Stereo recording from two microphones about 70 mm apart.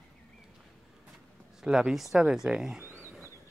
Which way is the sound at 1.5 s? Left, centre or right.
Centre.